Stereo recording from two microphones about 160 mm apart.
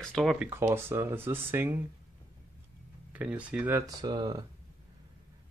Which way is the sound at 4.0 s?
25° right (ahead or behind).